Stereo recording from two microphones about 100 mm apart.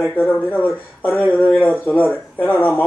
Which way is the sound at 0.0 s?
20° left (ahead or behind).